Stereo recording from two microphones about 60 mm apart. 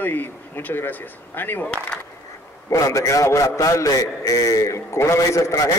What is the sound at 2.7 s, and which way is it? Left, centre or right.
A man's voice, left.